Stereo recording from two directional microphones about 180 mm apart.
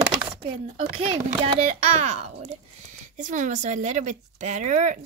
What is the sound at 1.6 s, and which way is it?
A child's voice, 35° right (ahead or behind).